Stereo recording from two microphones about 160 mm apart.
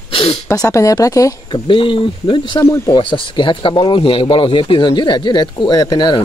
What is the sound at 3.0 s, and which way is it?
Speech, 30° left (ahead or behind).